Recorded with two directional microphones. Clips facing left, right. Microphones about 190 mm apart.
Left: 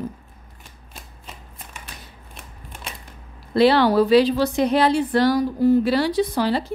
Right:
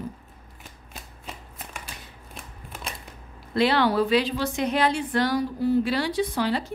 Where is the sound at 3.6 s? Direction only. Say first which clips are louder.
Left 6 dB; 35° left (ahead or behind).